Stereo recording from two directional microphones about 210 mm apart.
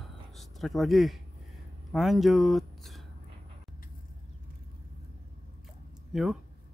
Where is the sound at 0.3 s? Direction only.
Centre (ahead or behind).